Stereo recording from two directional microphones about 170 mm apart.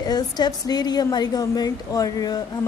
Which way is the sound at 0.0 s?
25° left (ahead or behind).